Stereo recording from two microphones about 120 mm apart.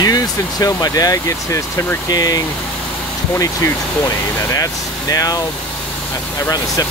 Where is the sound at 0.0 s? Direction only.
30° left (ahead or behind).